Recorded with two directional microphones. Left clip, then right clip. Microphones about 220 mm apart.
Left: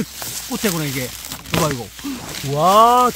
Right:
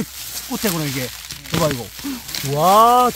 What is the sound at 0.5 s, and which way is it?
Speech, centre (ahead or behind).